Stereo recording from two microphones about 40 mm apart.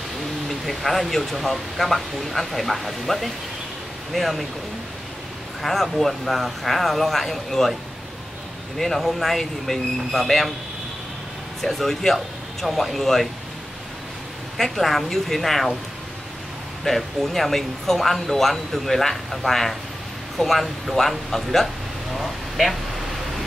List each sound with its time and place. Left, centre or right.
0.5 s speech: centre
5.6 s speech: centre
8.7 s speech: centre
11.6 s speech: centre
14.6 s speech: centre
16.8 s speech: centre